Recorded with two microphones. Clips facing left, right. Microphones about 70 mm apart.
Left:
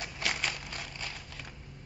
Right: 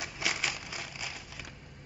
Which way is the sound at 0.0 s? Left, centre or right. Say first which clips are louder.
Even; centre.